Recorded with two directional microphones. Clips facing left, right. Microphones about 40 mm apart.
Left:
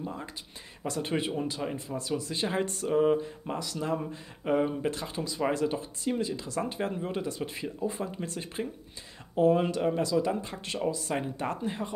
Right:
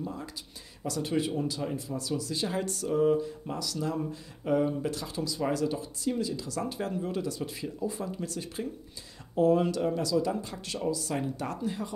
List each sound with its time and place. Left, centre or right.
0.0 s speech: left